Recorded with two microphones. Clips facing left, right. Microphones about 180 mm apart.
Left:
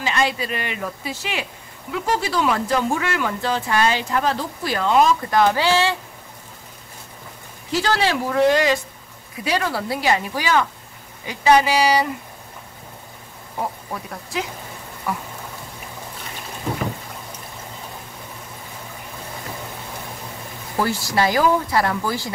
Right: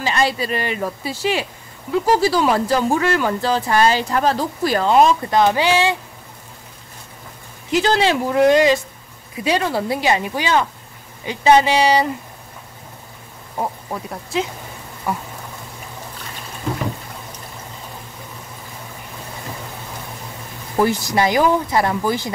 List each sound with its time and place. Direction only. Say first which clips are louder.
0.0 s speech: right 2 dB; 35° right (ahead or behind); by 5.9 s 15° right (ahead or behind)
7.7 s speech: right 4 dB; 20° right (ahead or behind)
14.3 s speech: right 5 dB; 25° right (ahead or behind)
20.7 s speech: right 4 dB; 20° right (ahead or behind)